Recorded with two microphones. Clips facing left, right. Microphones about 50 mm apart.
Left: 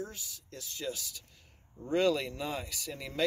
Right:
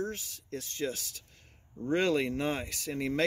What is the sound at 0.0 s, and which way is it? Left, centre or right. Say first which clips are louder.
Speech: right 6 dB; right.